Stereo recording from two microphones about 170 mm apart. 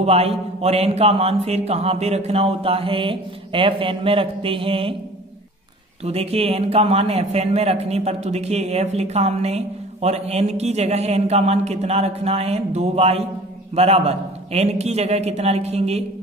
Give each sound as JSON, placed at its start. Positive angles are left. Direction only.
{"t": 0.0, "sound": "a man's voice", "side_deg": -35}
{"t": 6.0, "sound": "a man's voice", "side_deg": -35}